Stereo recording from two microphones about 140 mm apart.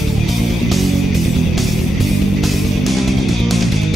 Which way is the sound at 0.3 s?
Centre (ahead or behind).